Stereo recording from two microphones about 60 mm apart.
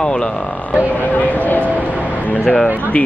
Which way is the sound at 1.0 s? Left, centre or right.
Left.